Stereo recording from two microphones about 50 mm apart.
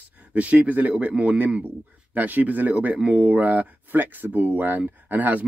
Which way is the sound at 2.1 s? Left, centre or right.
Right.